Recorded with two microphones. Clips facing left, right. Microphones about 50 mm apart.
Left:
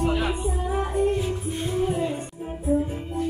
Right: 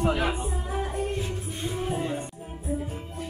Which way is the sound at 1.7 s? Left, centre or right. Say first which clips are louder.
Left 6 dB; centre.